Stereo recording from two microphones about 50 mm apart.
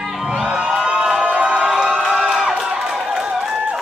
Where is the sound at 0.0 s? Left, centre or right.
Centre.